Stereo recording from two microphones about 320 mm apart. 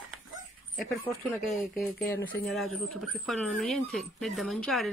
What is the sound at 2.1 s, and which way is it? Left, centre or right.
Speech, centre.